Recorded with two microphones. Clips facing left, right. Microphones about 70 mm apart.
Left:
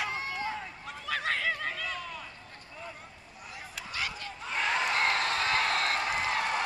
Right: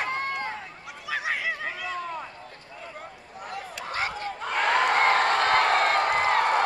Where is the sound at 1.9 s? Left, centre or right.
Right.